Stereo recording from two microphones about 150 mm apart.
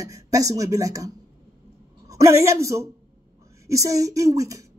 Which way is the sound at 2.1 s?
20° right (ahead or behind).